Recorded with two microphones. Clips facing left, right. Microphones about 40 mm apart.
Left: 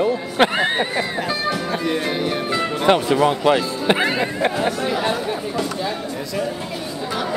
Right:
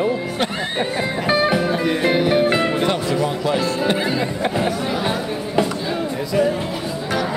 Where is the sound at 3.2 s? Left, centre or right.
Left.